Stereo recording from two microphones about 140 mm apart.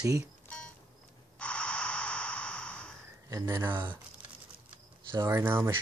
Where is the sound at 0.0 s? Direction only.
25° right (ahead or behind).